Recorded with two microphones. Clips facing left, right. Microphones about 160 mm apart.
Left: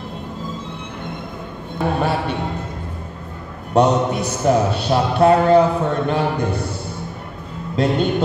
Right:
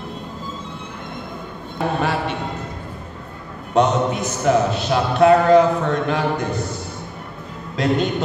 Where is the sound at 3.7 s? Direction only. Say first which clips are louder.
Left 2 dB; 35° left (ahead or behind).